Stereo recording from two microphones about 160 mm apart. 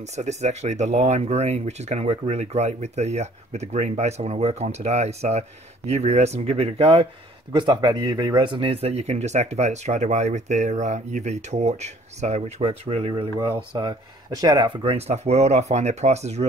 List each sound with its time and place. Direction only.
0.0 s speech: 45° right (ahead or behind); by 14.7 s 25° right (ahead or behind)
14.8 s speech: 40° right (ahead or behind)